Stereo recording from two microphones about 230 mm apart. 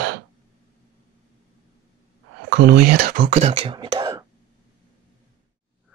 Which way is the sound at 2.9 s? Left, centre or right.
Right.